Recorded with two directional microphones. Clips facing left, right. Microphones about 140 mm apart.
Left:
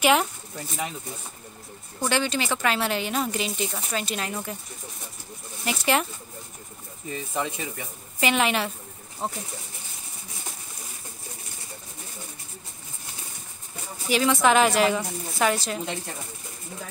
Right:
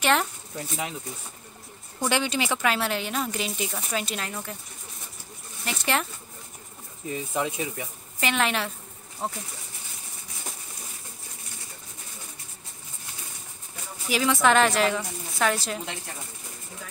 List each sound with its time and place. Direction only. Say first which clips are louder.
0.0 s speech: left 3 dB; 5° left (ahead or behind)
2.0 s speech: even; 15° right (ahead or behind)
2.7 s a woman's voice: left 2 dB; centre (ahead or behind)
5.7 s speech: left 3 dB; 5° left (ahead or behind)
7.1 s speech: right 1 dB; 5° right (ahead or behind)
8.2 s a woman's voice: left 3 dB; 5° left (ahead or behind)
14.0 s a woman's voice: left 1 dB; centre (ahead or behind)